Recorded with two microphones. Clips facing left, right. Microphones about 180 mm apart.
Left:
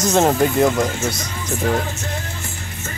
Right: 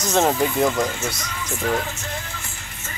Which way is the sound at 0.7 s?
45° left (ahead or behind).